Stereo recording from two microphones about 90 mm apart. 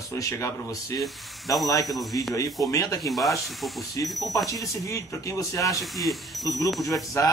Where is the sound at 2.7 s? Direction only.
40° left (ahead or behind).